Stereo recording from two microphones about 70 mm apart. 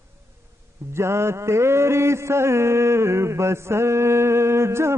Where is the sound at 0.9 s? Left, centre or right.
Right.